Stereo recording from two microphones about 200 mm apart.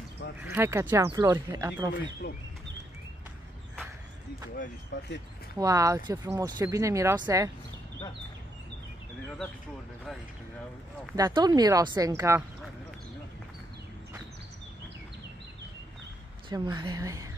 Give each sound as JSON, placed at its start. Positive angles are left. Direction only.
{"t": 0.5, "sound": "speech", "side_deg": -10}
{"t": 4.9, "sound": "speech", "side_deg": 65}
{"t": 5.6, "sound": "speech", "side_deg": -15}
{"t": 11.1, "sound": "speech", "side_deg": -20}
{"t": 16.4, "sound": "a woman's voice", "side_deg": -20}